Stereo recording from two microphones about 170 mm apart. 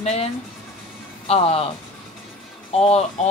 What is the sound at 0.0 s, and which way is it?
Speech, 40° left (ahead or behind).